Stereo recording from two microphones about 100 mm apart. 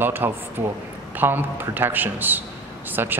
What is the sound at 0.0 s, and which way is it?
A man's voice, 20° right (ahead or behind).